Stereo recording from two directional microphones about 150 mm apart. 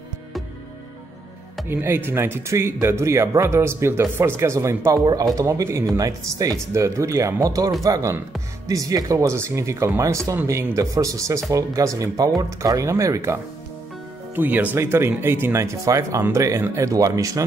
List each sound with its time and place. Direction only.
1.7 s speech: 15° right (ahead or behind)